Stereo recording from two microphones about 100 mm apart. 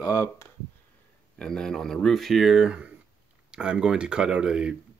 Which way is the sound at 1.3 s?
5° left (ahead or behind).